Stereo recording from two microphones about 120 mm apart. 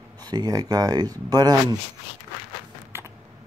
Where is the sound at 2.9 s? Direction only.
20° right (ahead or behind).